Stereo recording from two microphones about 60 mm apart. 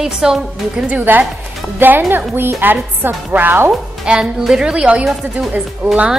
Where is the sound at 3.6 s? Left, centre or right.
Centre.